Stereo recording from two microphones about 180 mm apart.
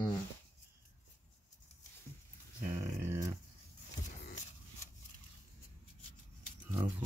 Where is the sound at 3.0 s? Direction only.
15° right (ahead or behind).